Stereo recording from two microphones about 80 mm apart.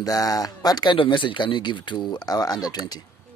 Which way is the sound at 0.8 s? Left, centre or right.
Left.